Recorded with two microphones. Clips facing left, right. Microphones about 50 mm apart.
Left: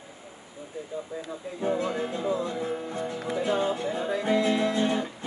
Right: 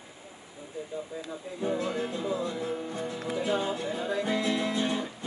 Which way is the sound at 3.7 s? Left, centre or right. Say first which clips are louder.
Left 2 dB; left.